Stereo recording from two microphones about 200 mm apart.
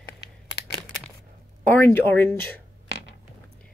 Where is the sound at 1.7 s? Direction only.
10° left (ahead or behind).